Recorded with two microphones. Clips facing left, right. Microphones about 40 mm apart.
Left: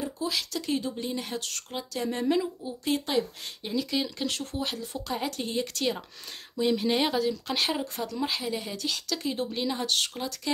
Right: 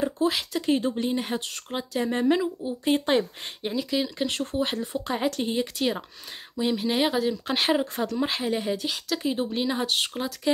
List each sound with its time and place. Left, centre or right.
0.0 s a sound: right
0.4 s speech: right
3.7 s speech: centre
4.3 s speech: right; by 7.2 s centre
7.2 s speech: right
8.6 s speech: centre